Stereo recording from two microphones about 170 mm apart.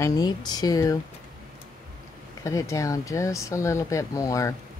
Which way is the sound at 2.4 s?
20° left (ahead or behind).